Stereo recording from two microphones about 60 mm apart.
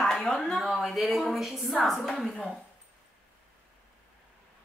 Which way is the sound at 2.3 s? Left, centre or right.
Centre.